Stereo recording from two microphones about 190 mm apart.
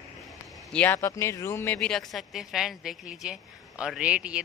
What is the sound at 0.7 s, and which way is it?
Speech, 10° left (ahead or behind).